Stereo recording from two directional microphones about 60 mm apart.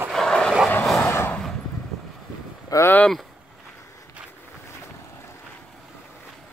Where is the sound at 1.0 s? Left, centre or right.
Left.